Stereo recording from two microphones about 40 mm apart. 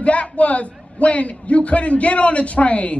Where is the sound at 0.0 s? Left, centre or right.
Left.